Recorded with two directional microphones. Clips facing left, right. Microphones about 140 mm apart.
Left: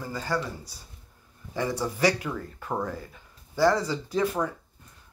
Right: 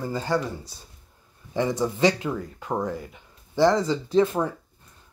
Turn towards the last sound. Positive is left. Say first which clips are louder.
# right 5 dB
turn(degrees=-25)  # may be behind; listen again after turning